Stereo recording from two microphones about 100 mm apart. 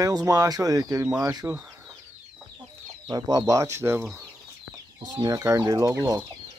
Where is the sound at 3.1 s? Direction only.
40° right (ahead or behind); by 4.0 s 25° right (ahead or behind).